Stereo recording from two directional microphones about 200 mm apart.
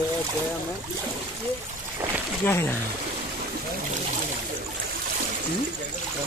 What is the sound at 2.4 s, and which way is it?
Speech, 10° left (ahead or behind).